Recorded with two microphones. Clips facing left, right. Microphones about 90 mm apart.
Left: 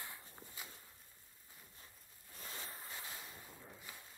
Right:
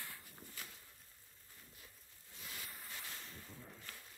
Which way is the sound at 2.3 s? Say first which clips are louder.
Left 2 dB; 30° left (ahead or behind).